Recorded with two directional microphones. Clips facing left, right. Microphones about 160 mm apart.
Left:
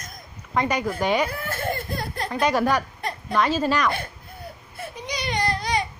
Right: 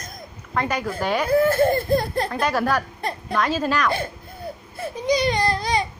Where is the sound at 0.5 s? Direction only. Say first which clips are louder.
Left 1 dB; 10° left (ahead or behind).